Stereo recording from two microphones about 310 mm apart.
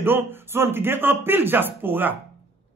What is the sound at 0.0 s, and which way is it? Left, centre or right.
A man's voice, centre.